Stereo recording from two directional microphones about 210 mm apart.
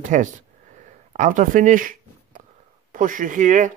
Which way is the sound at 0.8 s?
35° right (ahead or behind).